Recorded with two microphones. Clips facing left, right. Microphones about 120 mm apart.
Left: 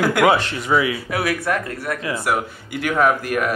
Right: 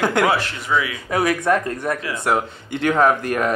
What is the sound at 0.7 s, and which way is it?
Speech, 10° left (ahead or behind).